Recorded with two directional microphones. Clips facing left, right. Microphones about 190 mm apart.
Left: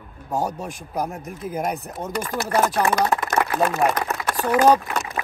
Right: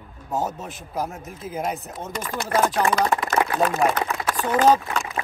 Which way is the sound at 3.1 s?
Centre (ahead or behind).